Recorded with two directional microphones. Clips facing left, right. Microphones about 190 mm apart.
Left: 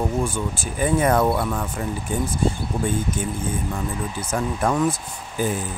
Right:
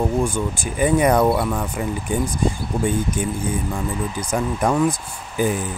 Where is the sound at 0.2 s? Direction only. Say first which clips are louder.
Right 3 dB; 15° right (ahead or behind).